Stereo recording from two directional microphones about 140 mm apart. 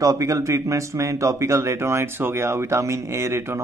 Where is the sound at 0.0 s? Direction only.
25° right (ahead or behind).